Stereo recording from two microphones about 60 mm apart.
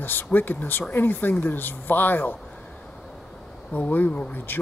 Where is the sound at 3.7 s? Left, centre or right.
Left.